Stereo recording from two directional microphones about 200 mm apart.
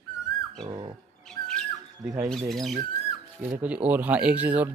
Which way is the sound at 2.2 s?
Centre (ahead or behind).